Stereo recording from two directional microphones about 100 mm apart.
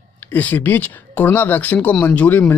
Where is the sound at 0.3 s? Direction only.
15° left (ahead or behind).